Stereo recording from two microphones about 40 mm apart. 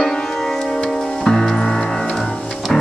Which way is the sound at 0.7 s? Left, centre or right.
Centre.